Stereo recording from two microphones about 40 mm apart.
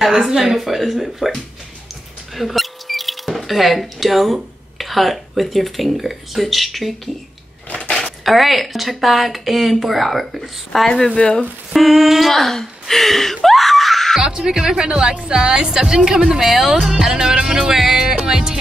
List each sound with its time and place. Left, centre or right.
0.2 s speech: centre
7.9 s speech: centre
14.2 s a woman's voice: centre